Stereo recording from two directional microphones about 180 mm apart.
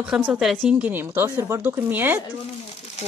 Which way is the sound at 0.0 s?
5° right (ahead or behind).